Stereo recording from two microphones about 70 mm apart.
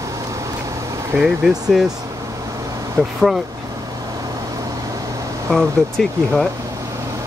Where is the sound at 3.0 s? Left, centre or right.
Right.